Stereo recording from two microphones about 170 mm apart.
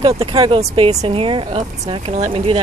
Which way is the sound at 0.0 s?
35° right (ahead or behind).